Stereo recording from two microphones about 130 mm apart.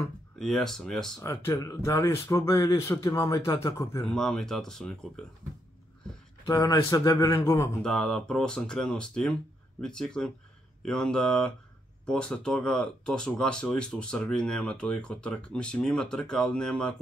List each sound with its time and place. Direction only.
0.4 s speech: centre (ahead or behind)
1.2 s speech: 25° left (ahead or behind)
4.0 s speech: 5° left (ahead or behind)
6.4 s speech: 30° left (ahead or behind)
7.8 s speech: 5° left (ahead or behind)